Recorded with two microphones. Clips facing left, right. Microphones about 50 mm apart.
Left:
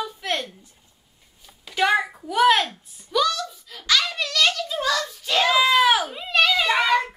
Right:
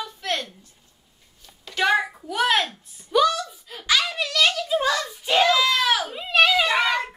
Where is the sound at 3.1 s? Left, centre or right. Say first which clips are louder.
Right 3 dB; centre.